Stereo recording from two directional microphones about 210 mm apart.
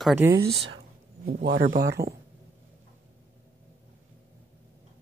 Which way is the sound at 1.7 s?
50° right (ahead or behind).